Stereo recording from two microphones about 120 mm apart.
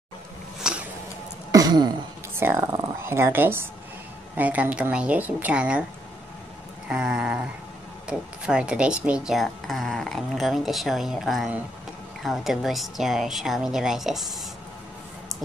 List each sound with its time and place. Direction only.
0.6 s a sound: 5° right (ahead or behind)
1.5 s throat clearing: 35° right (ahead or behind)
2.3 s a woman's voice: 20° right (ahead or behind)
6.9 s a woman's voice: 5° right (ahead or behind)